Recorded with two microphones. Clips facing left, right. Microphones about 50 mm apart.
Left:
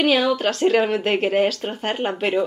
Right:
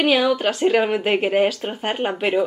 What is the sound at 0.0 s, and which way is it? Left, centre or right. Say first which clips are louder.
Speech: right 1 dB; centre.